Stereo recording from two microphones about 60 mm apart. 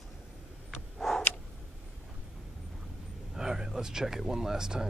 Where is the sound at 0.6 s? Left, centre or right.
Centre.